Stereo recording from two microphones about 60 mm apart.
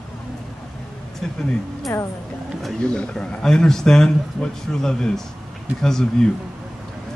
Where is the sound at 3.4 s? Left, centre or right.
Centre.